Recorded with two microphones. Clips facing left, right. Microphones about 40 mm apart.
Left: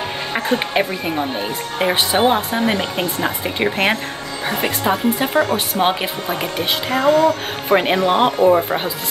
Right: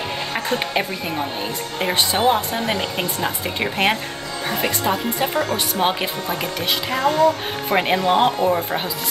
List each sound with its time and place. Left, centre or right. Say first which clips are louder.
0.3 s speech: left 4 dB; centre